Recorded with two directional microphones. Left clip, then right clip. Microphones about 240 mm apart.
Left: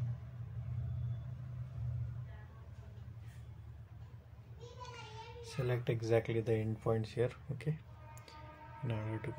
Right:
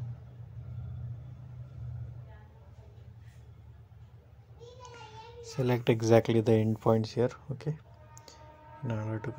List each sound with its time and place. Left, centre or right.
5.4 s speech: right
8.8 s speech: centre